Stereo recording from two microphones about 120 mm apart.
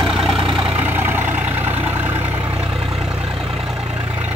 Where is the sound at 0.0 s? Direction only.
Centre (ahead or behind).